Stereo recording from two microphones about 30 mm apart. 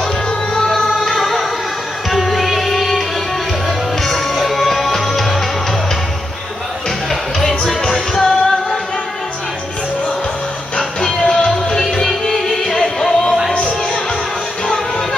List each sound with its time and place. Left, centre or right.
0.6 s music: centre
8.1 s music: centre
10.8 s music: centre